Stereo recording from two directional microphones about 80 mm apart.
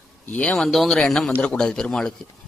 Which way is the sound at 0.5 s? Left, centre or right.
Centre.